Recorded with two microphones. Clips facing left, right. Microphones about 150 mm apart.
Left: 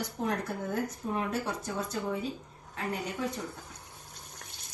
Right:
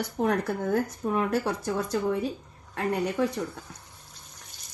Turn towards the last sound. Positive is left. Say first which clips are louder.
# right 8 dB
turn(degrees=-90)